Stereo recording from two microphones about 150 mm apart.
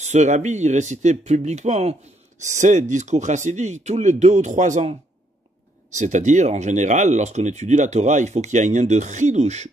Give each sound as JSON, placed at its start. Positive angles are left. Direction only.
{"t": 0.0, "sound": "speech", "side_deg": -50}
{"t": 5.9, "sound": "speech", "side_deg": -55}